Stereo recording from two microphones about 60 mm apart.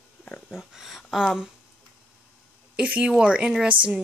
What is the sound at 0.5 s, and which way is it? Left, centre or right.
Speech, centre.